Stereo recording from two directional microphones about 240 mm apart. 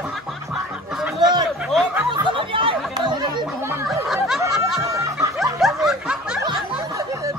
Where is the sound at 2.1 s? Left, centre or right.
Right.